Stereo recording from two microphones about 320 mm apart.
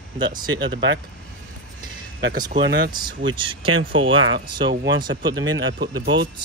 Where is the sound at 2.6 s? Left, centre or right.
Right.